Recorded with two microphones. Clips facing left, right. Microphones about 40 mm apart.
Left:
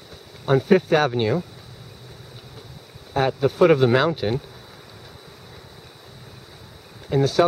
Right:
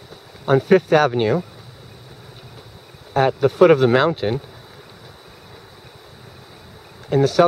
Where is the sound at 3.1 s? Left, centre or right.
Centre.